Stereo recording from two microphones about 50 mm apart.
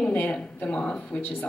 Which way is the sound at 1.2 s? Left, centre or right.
Left.